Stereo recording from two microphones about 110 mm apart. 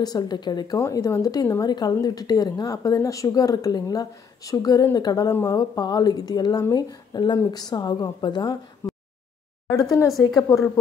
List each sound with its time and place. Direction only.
0.0 s a woman's voice: 40° left (ahead or behind)